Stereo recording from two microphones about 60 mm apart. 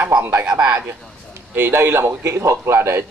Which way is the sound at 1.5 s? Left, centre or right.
Right.